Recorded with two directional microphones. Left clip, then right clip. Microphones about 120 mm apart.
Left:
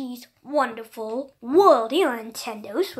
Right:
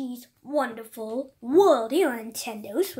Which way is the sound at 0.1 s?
25° right (ahead or behind).